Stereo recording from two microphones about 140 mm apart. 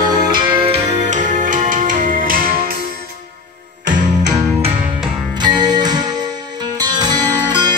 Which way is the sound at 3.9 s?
70° right (ahead or behind).